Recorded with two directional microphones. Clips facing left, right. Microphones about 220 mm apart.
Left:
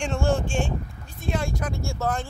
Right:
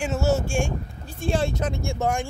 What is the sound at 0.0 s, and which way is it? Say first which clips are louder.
Speech: right 1 dB; 5° right (ahead or behind).